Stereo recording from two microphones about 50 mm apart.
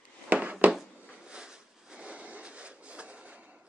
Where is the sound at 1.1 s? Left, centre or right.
Centre.